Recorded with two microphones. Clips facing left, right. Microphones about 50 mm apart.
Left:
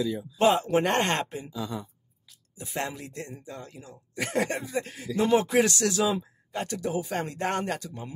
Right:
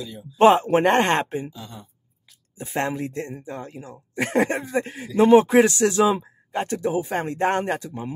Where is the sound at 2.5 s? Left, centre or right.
Right.